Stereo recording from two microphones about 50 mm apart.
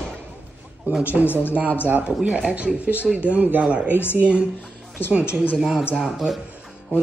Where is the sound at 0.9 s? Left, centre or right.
Right.